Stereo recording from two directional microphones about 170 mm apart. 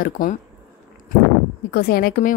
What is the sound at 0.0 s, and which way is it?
Speech, 50° left (ahead or behind).